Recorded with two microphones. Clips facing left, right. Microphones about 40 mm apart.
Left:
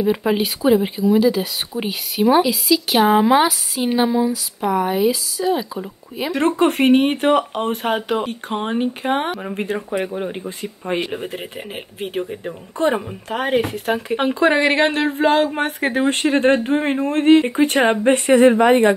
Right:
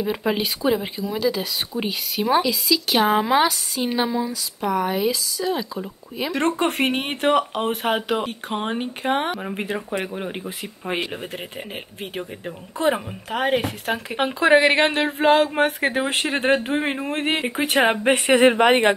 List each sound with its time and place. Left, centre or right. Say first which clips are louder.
0.0 s speech: left 5 dB; centre
18.0 s speech: left 5 dB; right